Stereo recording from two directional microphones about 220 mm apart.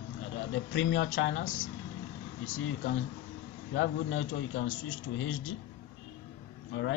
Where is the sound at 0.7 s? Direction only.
60° left (ahead or behind).